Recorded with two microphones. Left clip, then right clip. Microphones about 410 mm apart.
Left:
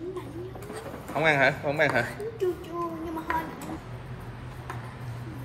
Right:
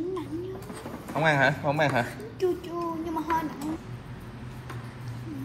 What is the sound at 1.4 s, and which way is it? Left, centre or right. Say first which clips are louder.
Speech: even; centre.